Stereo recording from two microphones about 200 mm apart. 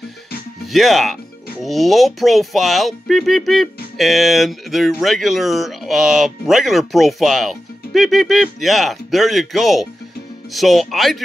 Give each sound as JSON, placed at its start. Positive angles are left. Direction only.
{"t": 0.7, "sound": "speech", "side_deg": 0}